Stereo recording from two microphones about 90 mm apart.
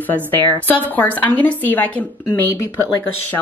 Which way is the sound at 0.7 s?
20° left (ahead or behind).